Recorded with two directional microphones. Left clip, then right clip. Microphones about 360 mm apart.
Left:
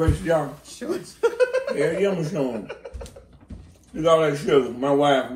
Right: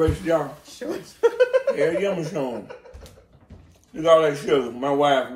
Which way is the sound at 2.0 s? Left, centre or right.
Centre.